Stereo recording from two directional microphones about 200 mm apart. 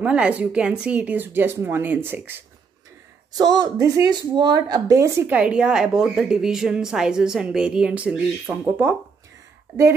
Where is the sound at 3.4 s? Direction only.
20° right (ahead or behind).